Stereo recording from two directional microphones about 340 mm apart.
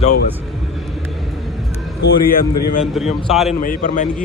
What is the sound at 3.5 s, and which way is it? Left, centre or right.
Speech, left.